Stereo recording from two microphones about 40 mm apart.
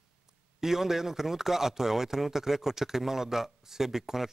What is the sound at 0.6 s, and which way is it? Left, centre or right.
A man's voice, centre.